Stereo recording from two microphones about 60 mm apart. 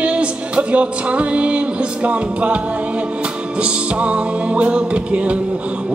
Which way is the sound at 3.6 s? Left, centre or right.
Centre.